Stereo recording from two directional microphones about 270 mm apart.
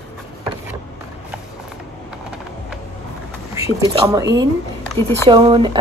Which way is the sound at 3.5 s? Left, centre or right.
Centre.